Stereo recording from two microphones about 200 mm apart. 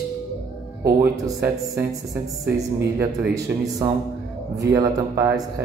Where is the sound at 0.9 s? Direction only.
10° right (ahead or behind).